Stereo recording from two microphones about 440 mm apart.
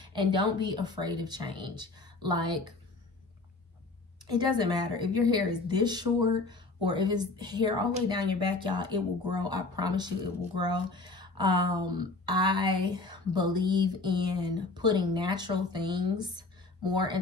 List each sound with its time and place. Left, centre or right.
0.0 s speech: centre
4.3 s speech: centre